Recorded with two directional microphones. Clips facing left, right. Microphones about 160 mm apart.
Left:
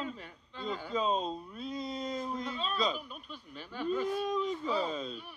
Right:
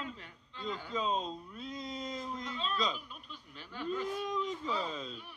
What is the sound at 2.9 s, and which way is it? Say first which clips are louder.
Speech: left 5 dB; 45° left (ahead or behind).